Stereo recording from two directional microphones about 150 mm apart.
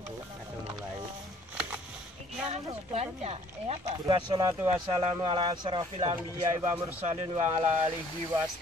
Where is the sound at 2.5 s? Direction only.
45° right (ahead or behind).